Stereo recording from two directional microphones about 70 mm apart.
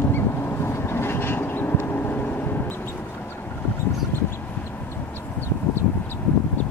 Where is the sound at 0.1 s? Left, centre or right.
Left.